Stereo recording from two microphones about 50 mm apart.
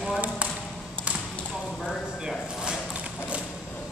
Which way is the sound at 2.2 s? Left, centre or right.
Centre.